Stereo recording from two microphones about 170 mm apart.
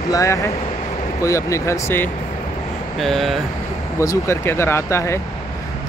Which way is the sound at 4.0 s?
20° left (ahead or behind).